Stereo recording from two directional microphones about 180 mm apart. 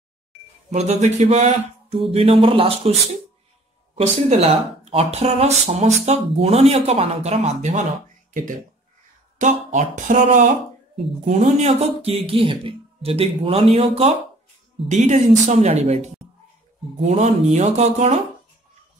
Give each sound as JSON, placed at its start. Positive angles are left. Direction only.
{"t": 0.7, "sound": "speech", "side_deg": -40}
{"t": 9.4, "sound": "speech", "side_deg": -45}
{"t": 17.0, "sound": "speech", "side_deg": -40}